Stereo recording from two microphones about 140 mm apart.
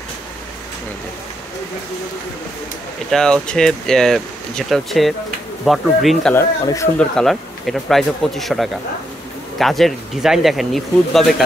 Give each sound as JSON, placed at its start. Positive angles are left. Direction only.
{"t": 3.1, "sound": "speech", "side_deg": 5}
{"t": 6.6, "sound": "speech", "side_deg": 25}
{"t": 7.0, "sound": "speech", "side_deg": 5}